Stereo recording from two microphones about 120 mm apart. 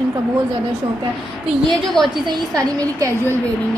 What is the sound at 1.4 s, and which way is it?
Speech, centre (ahead or behind).